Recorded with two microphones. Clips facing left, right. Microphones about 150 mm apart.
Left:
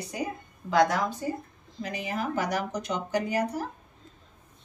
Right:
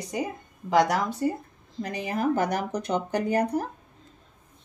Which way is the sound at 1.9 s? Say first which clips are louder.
Right 5 dB; 55° right (ahead or behind).